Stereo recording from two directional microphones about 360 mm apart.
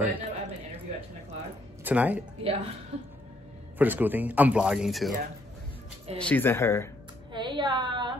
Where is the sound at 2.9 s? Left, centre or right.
Centre.